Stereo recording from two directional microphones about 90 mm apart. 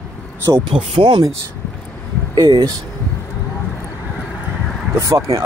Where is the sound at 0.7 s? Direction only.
65° right (ahead or behind).